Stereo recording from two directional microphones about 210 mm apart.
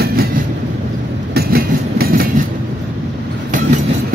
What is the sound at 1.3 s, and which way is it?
Train, 45° right (ahead or behind).